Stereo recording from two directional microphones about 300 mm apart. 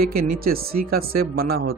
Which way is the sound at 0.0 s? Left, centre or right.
Right.